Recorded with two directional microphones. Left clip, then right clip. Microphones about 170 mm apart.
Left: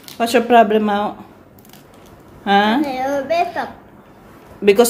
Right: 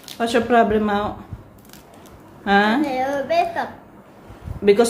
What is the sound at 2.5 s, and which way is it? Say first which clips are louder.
A child's voice: left 2 dB; 15° left (ahead or behind).